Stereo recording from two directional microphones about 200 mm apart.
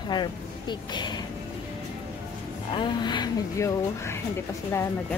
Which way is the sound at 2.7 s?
25° left (ahead or behind).